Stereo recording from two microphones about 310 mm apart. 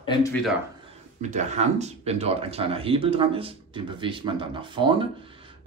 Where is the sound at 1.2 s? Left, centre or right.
Right.